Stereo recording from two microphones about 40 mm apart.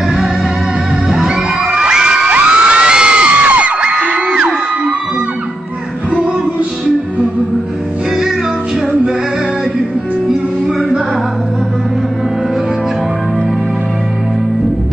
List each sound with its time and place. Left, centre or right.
1.8 s children shouting: centre
2.2 s crowd: right
3.4 s crowd: right
4.0 s whoop: right